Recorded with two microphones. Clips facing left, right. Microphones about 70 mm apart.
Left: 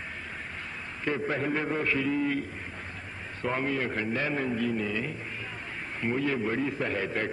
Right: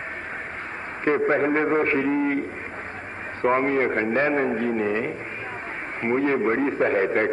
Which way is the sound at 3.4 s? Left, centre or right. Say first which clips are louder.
Right 9 dB; right.